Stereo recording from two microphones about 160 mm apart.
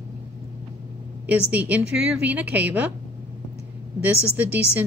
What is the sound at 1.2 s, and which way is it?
A woman's voice, 10° right (ahead or behind).